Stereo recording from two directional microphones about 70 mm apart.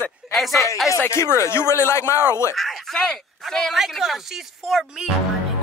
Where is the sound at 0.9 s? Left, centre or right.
Left.